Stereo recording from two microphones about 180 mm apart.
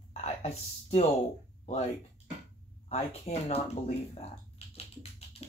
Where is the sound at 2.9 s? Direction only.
35° left (ahead or behind).